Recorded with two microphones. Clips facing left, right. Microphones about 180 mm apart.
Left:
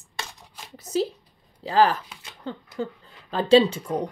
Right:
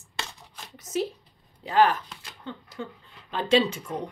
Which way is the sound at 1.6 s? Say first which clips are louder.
Left 1 dB; 35° left (ahead or behind).